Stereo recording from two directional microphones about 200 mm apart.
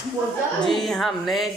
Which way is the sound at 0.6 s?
Centre (ahead or behind).